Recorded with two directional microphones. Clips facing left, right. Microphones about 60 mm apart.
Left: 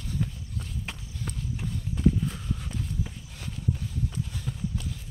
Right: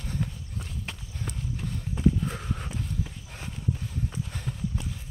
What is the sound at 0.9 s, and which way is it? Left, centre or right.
Run, centre.